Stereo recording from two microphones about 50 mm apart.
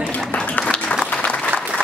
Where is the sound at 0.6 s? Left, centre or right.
Left.